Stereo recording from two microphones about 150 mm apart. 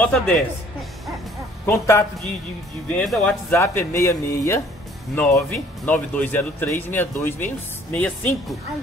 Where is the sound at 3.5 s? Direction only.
20° left (ahead or behind).